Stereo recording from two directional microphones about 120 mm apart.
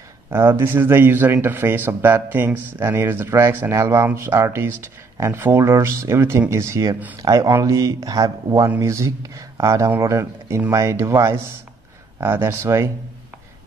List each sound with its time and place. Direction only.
0.3 s speech: 20° right (ahead or behind)